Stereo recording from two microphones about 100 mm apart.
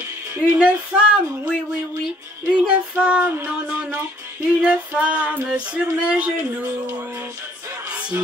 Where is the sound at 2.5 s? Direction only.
10° right (ahead or behind).